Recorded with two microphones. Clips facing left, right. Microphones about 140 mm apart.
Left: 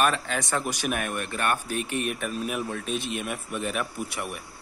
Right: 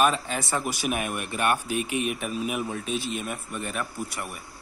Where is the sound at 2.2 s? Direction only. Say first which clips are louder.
Right 1 dB; 10° right (ahead or behind).